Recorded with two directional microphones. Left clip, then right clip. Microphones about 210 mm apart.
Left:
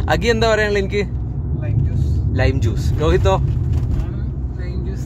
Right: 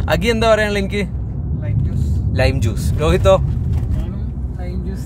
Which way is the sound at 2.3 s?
5° right (ahead or behind).